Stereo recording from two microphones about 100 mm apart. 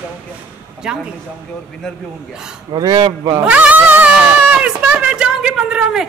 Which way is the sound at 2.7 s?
45° right (ahead or behind).